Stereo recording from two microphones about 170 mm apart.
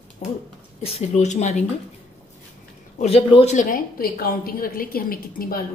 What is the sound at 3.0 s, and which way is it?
Speech, 35° left (ahead or behind).